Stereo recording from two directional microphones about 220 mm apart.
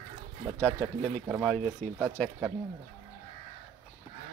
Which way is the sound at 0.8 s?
20° right (ahead or behind).